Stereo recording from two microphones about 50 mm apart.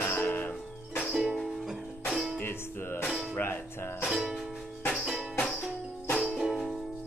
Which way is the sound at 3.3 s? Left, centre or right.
Left.